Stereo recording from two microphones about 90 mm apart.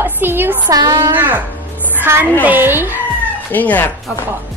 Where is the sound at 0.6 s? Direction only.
45° right (ahead or behind).